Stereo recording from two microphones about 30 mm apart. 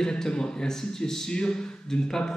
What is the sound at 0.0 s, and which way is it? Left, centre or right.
Speech, left.